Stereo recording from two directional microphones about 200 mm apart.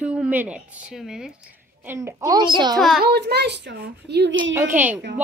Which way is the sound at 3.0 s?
55° right (ahead or behind).